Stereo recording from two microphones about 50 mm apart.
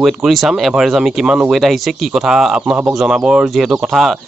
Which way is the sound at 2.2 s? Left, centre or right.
Centre.